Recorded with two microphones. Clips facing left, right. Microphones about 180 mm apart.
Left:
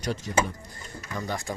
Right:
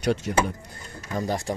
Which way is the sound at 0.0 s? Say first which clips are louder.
Right 7 dB; 65° right (ahead or behind).